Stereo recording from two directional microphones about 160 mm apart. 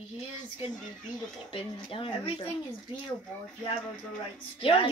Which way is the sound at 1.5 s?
35° left (ahead or behind).